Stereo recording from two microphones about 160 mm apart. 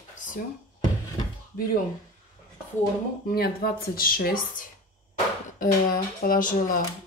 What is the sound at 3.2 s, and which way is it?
Speech, 70° left (ahead or behind).